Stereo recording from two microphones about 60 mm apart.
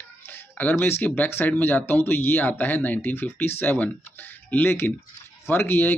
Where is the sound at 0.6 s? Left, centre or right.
Left.